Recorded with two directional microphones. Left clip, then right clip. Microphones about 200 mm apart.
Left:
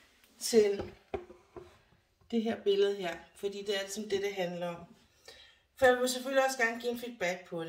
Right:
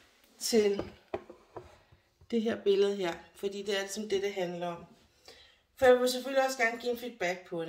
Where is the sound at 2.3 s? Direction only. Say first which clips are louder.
Right 2 dB; 35° right (ahead or behind).